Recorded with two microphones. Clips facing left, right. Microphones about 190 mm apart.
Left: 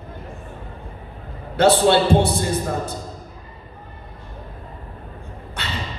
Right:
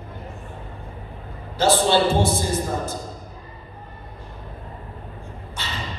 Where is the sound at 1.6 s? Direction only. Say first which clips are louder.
Left 3 dB; 60° left (ahead or behind).